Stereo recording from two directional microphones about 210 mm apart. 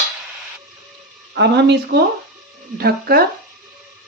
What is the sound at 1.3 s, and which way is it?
Speech, 55° right (ahead or behind).